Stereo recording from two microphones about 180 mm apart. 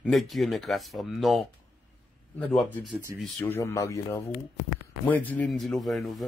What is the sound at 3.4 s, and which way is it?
Speech, 15° left (ahead or behind).